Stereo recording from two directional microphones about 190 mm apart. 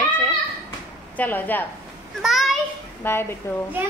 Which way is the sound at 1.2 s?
10° left (ahead or behind).